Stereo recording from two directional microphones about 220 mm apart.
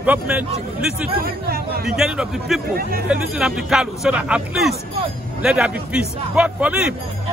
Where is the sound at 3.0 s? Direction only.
5° right (ahead or behind).